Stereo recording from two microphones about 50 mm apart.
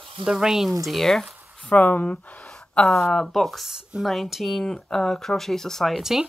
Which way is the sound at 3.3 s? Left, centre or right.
Centre.